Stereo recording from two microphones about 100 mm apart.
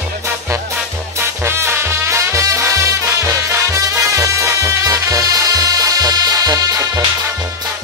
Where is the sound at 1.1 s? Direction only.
25° right (ahead or behind).